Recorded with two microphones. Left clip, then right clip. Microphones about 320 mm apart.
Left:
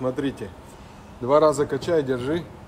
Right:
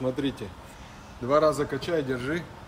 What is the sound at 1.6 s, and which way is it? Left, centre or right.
Speech, left.